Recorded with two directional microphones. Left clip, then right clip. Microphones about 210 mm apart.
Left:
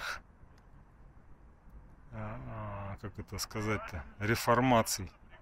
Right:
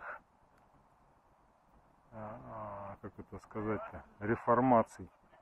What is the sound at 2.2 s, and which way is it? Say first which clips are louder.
Speech: left 1 dB; 15° left (ahead or behind).